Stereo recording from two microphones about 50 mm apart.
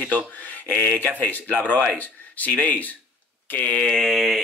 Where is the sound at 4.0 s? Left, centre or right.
Centre.